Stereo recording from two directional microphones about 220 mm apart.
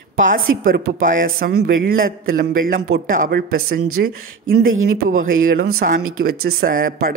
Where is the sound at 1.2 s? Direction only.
40° right (ahead or behind).